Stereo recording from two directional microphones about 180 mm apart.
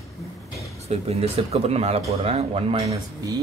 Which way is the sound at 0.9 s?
35° right (ahead or behind).